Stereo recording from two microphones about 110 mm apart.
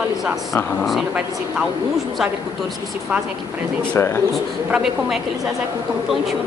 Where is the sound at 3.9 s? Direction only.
25° left (ahead or behind).